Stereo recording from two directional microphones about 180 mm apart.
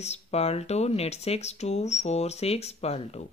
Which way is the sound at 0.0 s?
35° left (ahead or behind).